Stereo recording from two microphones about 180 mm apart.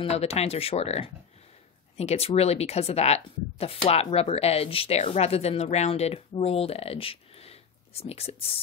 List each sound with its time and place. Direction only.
0.0 s speech: 35° left (ahead or behind)